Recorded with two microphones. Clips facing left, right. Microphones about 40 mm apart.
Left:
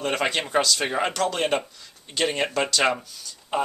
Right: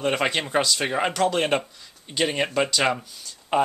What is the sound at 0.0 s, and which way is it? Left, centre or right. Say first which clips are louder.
Speech: right 1 dB; centre.